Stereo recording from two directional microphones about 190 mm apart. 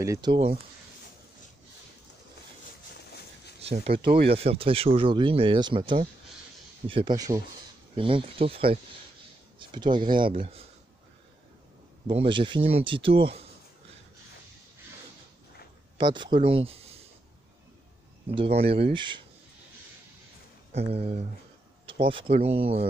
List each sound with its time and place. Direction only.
0.0 s speech: 20° right (ahead or behind)
3.6 s speech: 30° right (ahead or behind)
12.1 s speech: 25° right (ahead or behind)
16.0 s speech: 25° right (ahead or behind)
18.3 s speech: 30° right (ahead or behind)
20.7 s speech: 35° right (ahead or behind)